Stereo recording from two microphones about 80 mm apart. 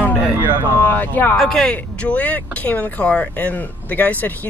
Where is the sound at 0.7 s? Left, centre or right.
Left.